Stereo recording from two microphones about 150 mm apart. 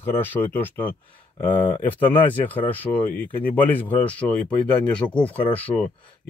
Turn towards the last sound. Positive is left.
turn(degrees=10)  # may be behind; listen again after turning